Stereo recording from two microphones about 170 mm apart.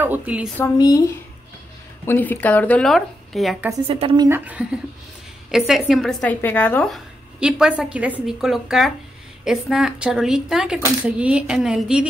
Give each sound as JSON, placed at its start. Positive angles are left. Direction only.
{"t": 0.0, "sound": "speech", "side_deg": -10}
{"t": 0.7, "sound": "speech", "side_deg": 20}
{"t": 2.0, "sound": "speech", "side_deg": 10}
{"t": 3.8, "sound": "speech", "side_deg": -35}
{"t": 4.2, "sound": "speech", "side_deg": -10}
{"t": 7.3, "sound": "speech", "side_deg": -5}